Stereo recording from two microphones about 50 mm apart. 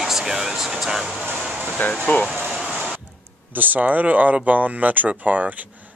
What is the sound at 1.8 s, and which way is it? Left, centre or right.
Speech, left.